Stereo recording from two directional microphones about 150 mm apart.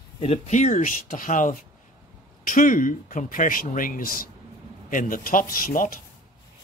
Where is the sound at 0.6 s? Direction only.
55° left (ahead or behind); by 4.3 s 75° left (ahead or behind).